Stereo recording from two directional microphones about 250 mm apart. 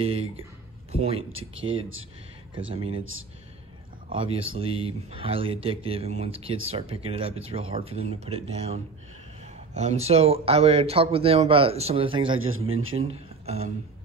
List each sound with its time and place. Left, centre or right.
0.0 s speech: right
1.3 s a man's voice: right
2.7 s speech: right
3.0 s a man's voice: right
4.1 s speech: right
12.4 s a man's voice: right
13.1 s speech: right